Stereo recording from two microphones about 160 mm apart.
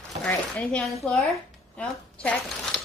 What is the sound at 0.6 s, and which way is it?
Speech, 5° left (ahead or behind).